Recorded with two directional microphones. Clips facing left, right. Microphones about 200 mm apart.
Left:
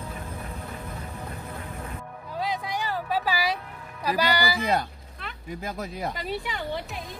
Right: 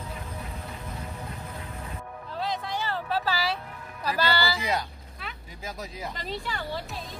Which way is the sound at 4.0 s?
15° left (ahead or behind).